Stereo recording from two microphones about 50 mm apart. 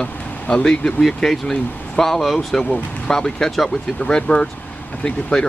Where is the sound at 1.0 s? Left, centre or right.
Centre.